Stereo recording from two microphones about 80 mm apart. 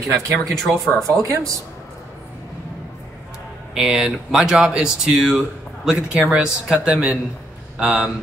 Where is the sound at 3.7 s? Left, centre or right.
Centre.